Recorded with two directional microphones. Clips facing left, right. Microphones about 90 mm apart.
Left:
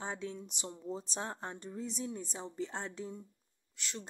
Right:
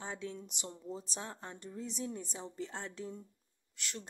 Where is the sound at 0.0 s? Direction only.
25° left (ahead or behind).